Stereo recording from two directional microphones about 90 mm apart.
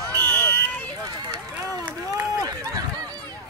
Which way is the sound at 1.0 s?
45° right (ahead or behind).